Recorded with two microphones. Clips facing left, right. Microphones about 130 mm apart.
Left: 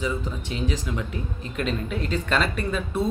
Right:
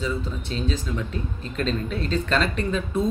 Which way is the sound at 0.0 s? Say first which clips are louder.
Even; 15° left (ahead or behind).